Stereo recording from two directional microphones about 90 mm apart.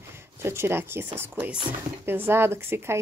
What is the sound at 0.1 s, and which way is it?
A woman's voice, 30° right (ahead or behind).